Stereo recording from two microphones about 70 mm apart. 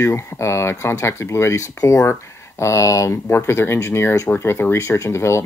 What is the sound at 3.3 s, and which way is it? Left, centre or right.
Speech, left.